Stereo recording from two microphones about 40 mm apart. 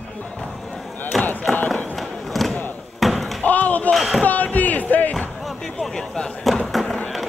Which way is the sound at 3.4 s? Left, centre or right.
Left.